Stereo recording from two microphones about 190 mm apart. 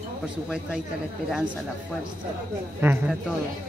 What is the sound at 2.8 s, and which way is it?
Speech, 5° right (ahead or behind).